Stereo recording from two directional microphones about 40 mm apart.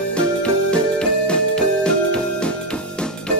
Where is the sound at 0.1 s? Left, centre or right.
Left.